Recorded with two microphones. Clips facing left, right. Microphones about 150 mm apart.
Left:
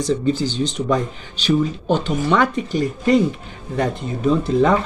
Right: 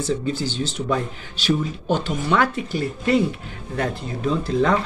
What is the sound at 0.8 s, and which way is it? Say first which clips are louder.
A man's voice: left 4 dB; 5° right (ahead or behind).